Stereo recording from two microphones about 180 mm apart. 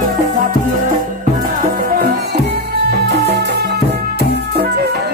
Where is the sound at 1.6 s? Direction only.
55° right (ahead or behind).